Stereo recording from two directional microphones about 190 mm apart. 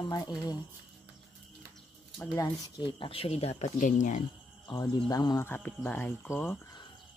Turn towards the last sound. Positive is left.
turn(degrees=10)  # may be behind; listen again after turning